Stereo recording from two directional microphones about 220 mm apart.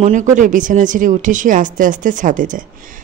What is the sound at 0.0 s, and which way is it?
A woman's voice, 35° right (ahead or behind).